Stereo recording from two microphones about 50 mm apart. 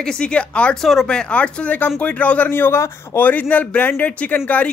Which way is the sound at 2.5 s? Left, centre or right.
Left.